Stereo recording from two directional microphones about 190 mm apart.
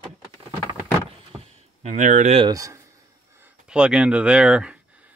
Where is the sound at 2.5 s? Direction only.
15° right (ahead or behind).